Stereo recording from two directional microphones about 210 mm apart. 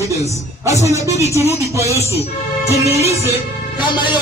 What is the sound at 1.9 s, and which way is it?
Speech, 30° left (ahead or behind).